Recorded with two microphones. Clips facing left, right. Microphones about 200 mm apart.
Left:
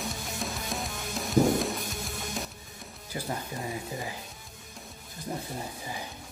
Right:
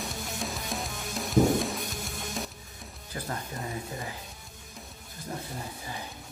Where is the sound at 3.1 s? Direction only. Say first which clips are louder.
Left 2 dB; 15° left (ahead or behind).